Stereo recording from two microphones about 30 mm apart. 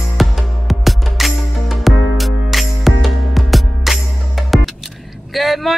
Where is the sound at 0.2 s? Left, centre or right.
Centre.